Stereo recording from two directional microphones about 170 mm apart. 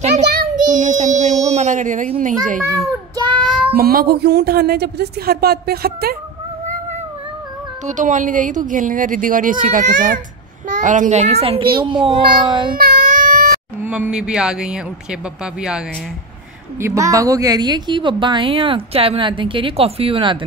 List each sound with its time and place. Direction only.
0.3 s child singing: 70° right (ahead or behind)
0.7 s a sound: 45° right (ahead or behind)
3.4 s child singing: centre (ahead or behind)
3.7 s a woman's voice: 60° right (ahead or behind)
7.8 s a child's voice: 50° right (ahead or behind); by 12.7 s 30° right (ahead or behind)
12.7 s baby cry: 60° right (ahead or behind)
13.8 s a man's voice: 10° right (ahead or behind)
16.8 s a woman's voice: 20° right (ahead or behind)